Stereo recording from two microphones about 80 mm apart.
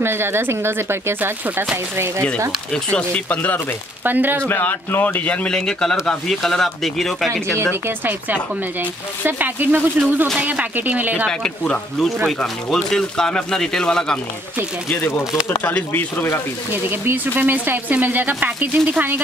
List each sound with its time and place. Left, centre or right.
0.0 s speech: right
2.7 s speech: centre
4.0 s speech: right
4.5 s a man's voice: left; by 7.2 s centre
9.2 s speech: right
11.2 s speech: centre
15.6 s a man's voice: centre
17.0 s speech: right